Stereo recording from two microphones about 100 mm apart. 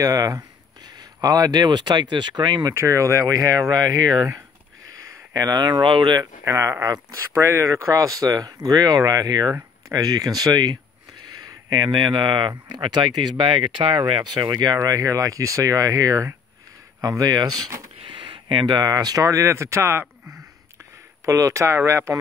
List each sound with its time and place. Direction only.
0.0 s speech: 35° right (ahead or behind)
2.7 s speech: 30° right (ahead or behind); by 6.2 s 50° right (ahead or behind)
6.4 s speech: 30° right (ahead or behind)
17.9 s a sound: 60° right (ahead or behind)
18.7 s speech: 40° right (ahead or behind); by 20.1 s 25° right (ahead or behind)
21.3 s speech: 30° right (ahead or behind)